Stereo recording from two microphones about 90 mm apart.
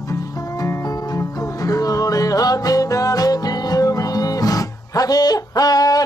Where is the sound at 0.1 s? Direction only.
45° left (ahead or behind).